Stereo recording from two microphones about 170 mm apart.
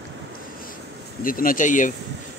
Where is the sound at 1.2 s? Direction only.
55° left (ahead or behind).